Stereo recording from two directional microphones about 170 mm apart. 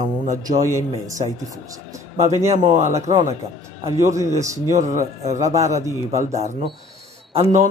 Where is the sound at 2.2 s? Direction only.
40° right (ahead or behind).